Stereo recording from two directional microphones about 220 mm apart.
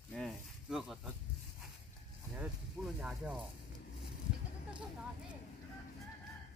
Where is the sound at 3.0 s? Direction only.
Centre (ahead or behind).